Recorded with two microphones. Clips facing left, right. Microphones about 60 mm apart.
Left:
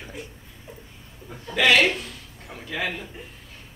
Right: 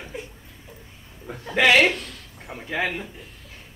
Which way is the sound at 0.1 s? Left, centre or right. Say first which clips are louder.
Right 4 dB; right.